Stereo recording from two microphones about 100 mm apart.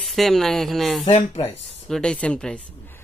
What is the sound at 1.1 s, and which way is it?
Speech, 90° left.